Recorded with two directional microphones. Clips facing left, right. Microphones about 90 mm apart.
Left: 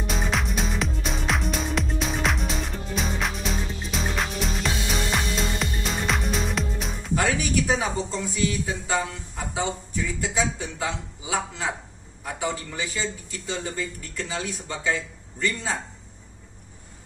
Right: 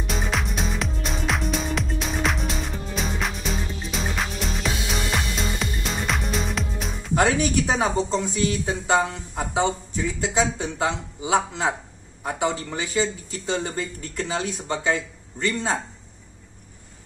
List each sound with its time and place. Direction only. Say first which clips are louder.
0.0 s music: even; centre (ahead or behind)
7.2 s speech: right 4 dB; 30° right (ahead or behind)